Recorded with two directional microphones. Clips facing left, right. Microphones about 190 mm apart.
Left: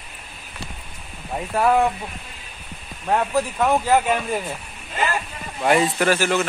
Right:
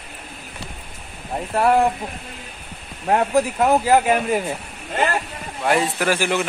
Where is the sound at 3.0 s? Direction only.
20° right (ahead or behind).